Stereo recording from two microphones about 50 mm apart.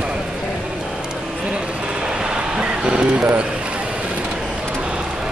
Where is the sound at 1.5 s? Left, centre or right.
Centre.